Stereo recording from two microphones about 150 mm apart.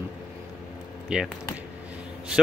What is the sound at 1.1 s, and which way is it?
Speech, 5° right (ahead or behind).